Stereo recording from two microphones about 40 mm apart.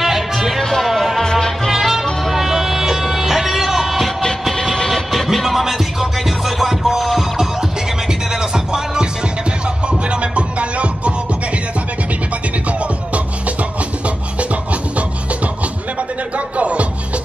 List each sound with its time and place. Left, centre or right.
0.0 s music: centre
1.2 s music: centre
1.7 s music: centre
8.1 s music: centre
9.8 s music: right
14.0 s music: right